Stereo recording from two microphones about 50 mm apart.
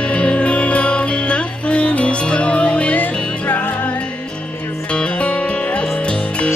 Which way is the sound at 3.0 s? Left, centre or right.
Left.